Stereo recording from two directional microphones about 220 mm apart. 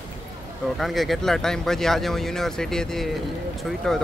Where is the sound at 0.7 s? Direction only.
Centre (ahead or behind).